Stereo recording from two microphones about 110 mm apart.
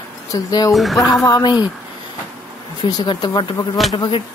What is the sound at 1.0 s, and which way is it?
Speech, 30° left (ahead or behind).